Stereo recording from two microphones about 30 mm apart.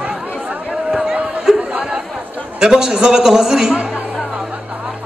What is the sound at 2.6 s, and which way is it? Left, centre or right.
A man's voice, centre.